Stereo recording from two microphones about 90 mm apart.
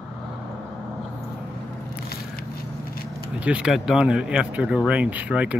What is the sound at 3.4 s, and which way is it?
Speech, 10° right (ahead or behind).